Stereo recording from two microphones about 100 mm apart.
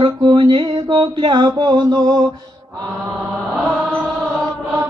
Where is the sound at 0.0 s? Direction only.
50° right (ahead or behind).